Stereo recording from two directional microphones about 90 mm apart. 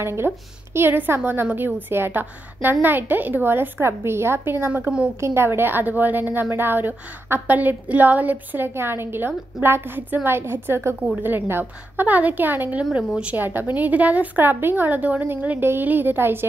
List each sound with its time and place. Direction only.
0.0 s a woman's voice: 25° right (ahead or behind)